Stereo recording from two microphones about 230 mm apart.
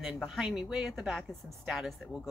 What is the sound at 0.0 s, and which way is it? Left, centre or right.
Speech, centre.